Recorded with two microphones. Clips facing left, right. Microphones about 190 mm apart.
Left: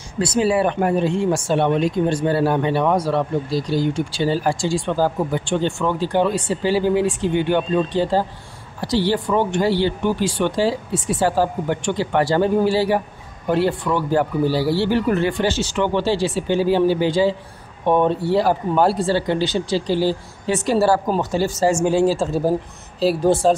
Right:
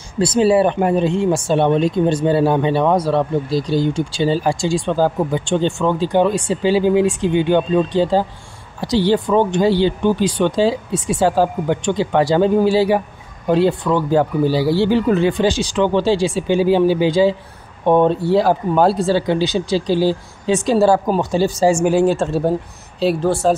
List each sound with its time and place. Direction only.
0.2 s speech: 30° right (ahead or behind); by 22.0 s 10° right (ahead or behind)
22.0 s speech: centre (ahead or behind)